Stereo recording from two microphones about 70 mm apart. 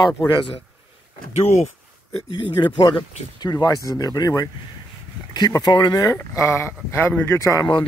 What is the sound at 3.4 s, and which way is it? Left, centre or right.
Speech, left.